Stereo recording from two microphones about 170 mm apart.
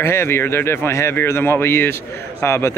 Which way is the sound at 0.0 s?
15° left (ahead or behind).